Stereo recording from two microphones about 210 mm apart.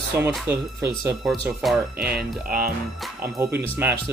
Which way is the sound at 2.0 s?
45° right (ahead or behind).